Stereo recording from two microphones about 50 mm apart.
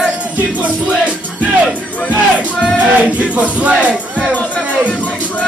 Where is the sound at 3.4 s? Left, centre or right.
Right.